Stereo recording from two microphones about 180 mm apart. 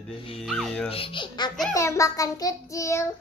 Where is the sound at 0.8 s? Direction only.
30° left (ahead or behind).